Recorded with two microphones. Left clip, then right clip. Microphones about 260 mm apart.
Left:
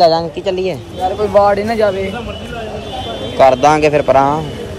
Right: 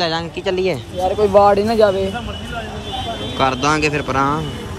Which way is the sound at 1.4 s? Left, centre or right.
Centre.